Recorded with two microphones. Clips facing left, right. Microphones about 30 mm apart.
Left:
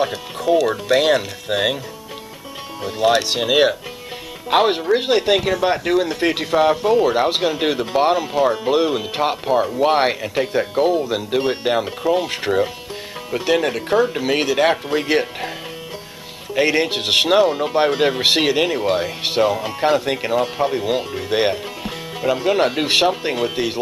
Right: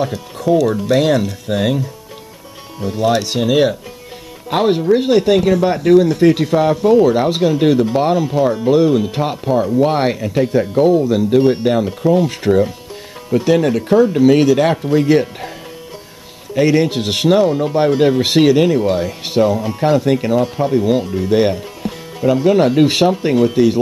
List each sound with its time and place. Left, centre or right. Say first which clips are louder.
0.0 s speech: right 2 dB; left
2.8 s speech: right 1 dB; left
16.5 s speech: right 4 dB; left